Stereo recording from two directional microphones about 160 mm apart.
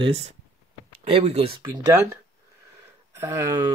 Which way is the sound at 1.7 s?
20° right (ahead or behind).